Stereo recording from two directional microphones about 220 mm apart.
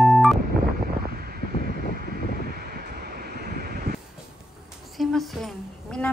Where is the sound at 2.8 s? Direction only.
45° right (ahead or behind).